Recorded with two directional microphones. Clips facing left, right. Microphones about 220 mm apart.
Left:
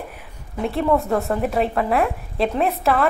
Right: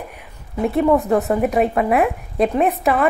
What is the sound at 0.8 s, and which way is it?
Speech, 15° right (ahead or behind).